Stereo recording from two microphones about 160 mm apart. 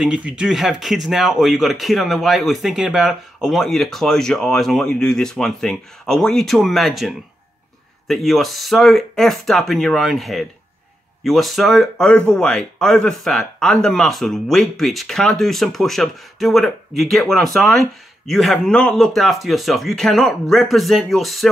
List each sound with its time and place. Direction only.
0.0 s speech: 5° right (ahead or behind)